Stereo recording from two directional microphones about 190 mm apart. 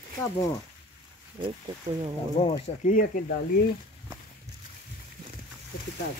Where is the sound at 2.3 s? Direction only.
35° left (ahead or behind).